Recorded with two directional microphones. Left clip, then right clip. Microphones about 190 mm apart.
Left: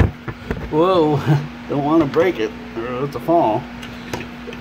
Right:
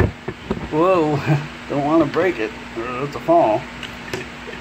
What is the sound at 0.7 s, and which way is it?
Speech, 10° left (ahead or behind).